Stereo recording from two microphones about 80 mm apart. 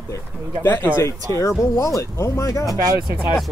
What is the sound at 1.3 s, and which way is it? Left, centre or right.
Speech, left.